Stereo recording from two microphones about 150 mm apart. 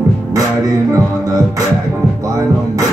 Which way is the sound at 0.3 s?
20° right (ahead or behind).